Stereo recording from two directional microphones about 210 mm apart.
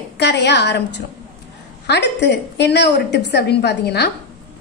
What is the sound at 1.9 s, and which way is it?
A woman's voice, 55° left (ahead or behind).